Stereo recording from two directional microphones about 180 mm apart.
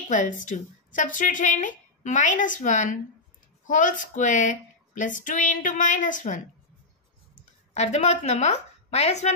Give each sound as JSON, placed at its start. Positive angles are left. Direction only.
{"t": 0.1, "sound": "a woman's voice", "side_deg": 45}